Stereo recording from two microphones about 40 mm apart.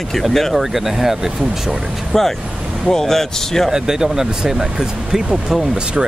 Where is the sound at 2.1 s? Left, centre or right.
Centre.